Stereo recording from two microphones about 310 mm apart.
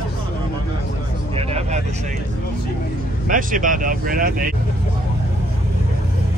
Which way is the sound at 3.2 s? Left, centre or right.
Right.